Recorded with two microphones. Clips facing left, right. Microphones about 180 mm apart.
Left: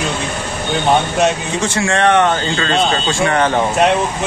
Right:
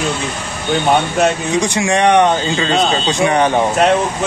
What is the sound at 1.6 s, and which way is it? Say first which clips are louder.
Speech: right 1 dB; 15° right (ahead or behind).